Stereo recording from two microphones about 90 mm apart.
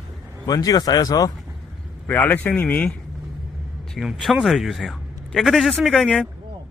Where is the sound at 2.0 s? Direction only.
20° left (ahead or behind).